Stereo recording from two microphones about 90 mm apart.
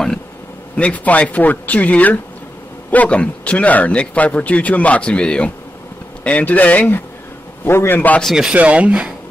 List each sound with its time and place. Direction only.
0.7 s a man's voice: 15° left (ahead or behind)
8.2 s speech: centre (ahead or behind)
8.5 s speech: 15° right (ahead or behind)